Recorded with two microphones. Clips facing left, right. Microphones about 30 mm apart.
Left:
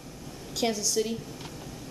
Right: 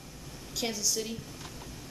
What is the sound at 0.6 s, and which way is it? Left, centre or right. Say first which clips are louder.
Speech: left 5 dB; centre.